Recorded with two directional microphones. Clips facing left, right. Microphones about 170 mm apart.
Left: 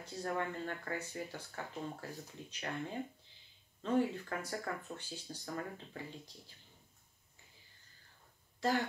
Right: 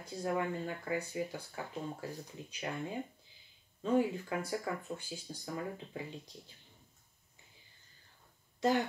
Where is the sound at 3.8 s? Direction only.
10° right (ahead or behind).